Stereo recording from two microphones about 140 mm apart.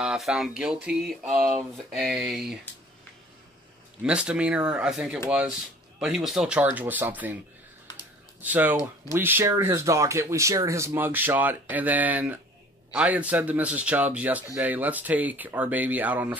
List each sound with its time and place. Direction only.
0.0 s speech: 5° right (ahead or behind)
4.0 s speech: 5° right (ahead or behind)
8.4 s speech: 10° right (ahead or behind)